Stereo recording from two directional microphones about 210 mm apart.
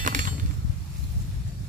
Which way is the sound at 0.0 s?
40° right (ahead or behind).